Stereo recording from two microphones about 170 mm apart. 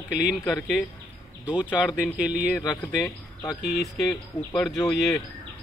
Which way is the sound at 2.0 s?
5° right (ahead or behind).